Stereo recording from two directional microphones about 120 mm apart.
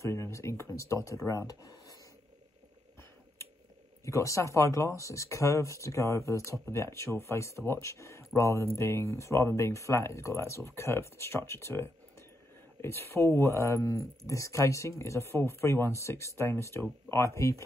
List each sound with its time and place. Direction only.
0.0 s speech: 25° left (ahead or behind)
4.0 s speech: 25° left (ahead or behind)